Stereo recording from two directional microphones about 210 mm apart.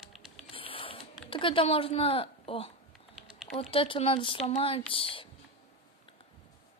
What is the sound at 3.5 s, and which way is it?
Speech, 25° left (ahead or behind).